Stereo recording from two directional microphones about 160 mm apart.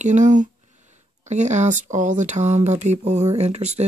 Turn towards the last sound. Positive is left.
turn(degrees=-45)  # may be behind; listen again after turning